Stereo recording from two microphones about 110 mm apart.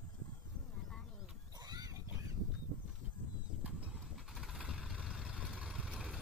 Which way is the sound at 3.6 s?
5° right (ahead or behind).